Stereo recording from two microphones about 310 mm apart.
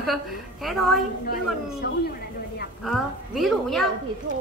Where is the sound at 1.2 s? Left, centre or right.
Left.